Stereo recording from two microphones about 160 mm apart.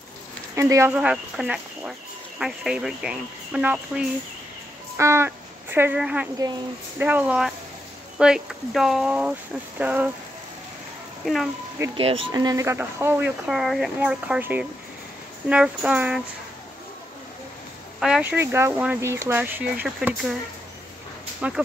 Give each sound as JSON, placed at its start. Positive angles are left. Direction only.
{"t": 0.6, "sound": "speech", "side_deg": -20}
{"t": 0.9, "sound": "speech", "side_deg": -5}
{"t": 11.3, "sound": "speech", "side_deg": 0}
{"t": 11.9, "sound": "speech", "side_deg": -35}
{"t": 12.3, "sound": "speech", "side_deg": -25}
{"t": 13.5, "sound": "speech", "side_deg": 0}
{"t": 18.0, "sound": "speech", "side_deg": -5}
{"t": 21.4, "sound": "speech", "side_deg": -5}